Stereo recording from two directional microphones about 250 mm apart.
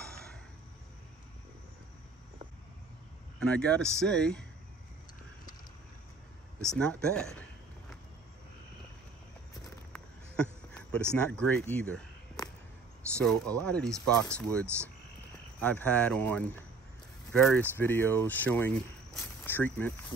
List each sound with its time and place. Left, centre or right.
3.3 s speech: centre
6.7 s speech: centre
9.9 s a sound: centre
11.1 s speech: centre
12.4 s a sound: centre
13.2 s speech: centre